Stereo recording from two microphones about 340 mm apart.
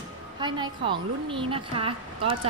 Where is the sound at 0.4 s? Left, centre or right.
Centre.